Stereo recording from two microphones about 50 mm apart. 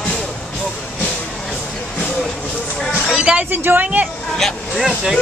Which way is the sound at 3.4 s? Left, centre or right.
Right.